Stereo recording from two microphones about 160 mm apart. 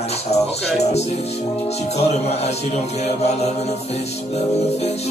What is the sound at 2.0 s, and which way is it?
Speech, 40° left (ahead or behind).